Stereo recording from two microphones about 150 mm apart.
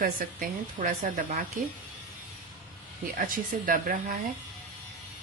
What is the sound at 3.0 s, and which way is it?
Speech, 65° right (ahead or behind).